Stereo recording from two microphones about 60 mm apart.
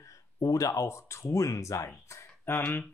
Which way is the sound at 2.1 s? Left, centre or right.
Left.